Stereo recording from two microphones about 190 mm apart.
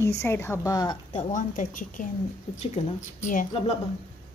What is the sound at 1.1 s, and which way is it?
A woman's voice, 40° left (ahead or behind).